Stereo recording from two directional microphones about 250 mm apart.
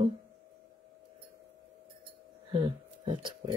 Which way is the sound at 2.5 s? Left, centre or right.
Centre.